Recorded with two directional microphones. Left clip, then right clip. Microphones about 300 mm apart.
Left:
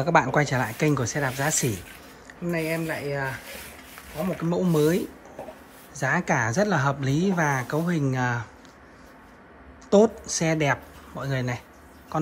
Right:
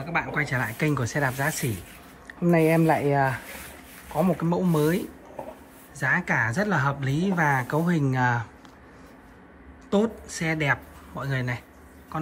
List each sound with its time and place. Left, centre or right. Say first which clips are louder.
0.0 s speech: left 6 dB; centre
4.4 s speech: left 1 dB; centre
9.8 s a woman's voice: left 6 dB; centre